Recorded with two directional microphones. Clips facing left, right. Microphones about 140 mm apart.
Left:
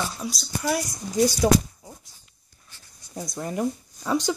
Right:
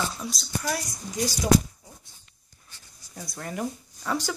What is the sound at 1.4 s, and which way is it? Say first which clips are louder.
Speech: left 1 dB; 60° left (ahead or behind).